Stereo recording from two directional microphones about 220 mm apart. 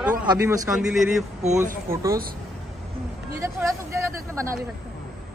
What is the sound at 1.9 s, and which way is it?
Speech, 15° right (ahead or behind).